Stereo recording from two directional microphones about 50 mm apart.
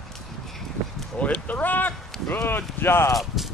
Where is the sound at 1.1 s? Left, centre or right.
Left.